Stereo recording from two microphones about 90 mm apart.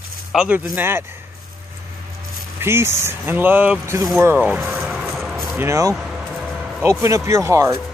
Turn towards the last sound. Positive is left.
turn(degrees=-30)  # may be behind; listen again after turning